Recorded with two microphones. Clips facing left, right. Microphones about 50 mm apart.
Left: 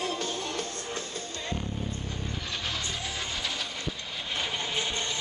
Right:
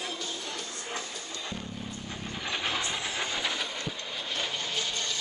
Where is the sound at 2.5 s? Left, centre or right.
Right.